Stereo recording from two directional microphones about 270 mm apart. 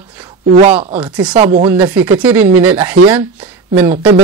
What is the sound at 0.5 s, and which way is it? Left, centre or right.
Speech, right.